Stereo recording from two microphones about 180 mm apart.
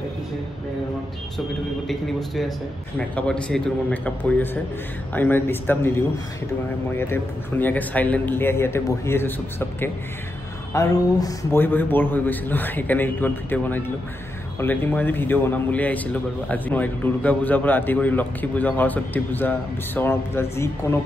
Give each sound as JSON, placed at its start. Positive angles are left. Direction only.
{"t": 1.9, "sound": "a man's voice", "side_deg": 0}